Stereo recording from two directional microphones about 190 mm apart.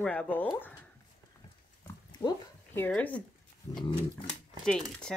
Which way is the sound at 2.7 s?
10° left (ahead or behind).